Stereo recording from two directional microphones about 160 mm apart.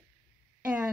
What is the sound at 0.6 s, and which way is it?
Speech, 10° right (ahead or behind).